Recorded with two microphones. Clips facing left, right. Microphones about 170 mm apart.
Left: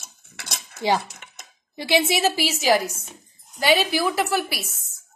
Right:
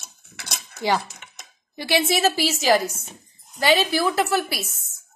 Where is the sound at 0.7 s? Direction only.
20° left (ahead or behind).